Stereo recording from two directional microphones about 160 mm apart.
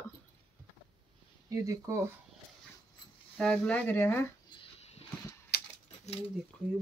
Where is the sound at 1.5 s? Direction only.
20° right (ahead or behind).